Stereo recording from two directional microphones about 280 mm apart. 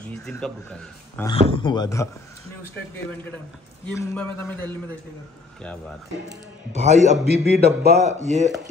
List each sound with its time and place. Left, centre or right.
0.3 s a man's voice: centre
1.5 s a man's voice: centre
3.8 s a man's voice: centre
6.8 s a man's voice: right
7.3 s speech: right